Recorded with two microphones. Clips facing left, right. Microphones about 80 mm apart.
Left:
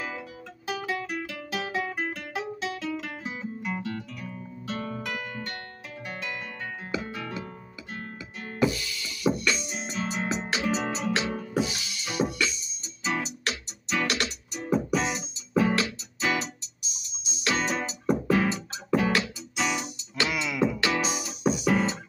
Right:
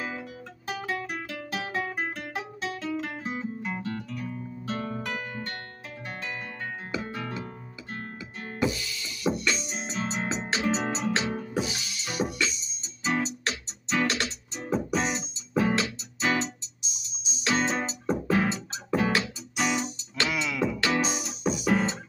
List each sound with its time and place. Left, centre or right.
0.7 s guitar: right
7.0 s music: right
7.9 s guitar: right
8.7 s music: right
19.8 s music: centre
21.6 s music: right